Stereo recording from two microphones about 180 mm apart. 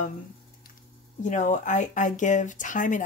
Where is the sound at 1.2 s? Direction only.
45° left (ahead or behind).